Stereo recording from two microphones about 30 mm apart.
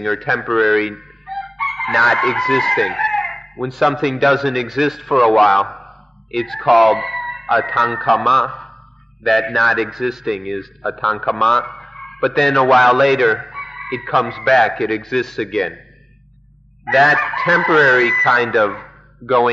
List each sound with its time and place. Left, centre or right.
0.0 s speech: centre
3.6 s speech: centre
8.5 s a sound: centre
9.2 s speech: centre
11.9 s a man's voice: centre
16.8 s speech: centre